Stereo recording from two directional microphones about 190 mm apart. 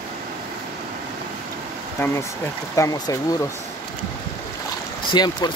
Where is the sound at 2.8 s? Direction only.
20° left (ahead or behind).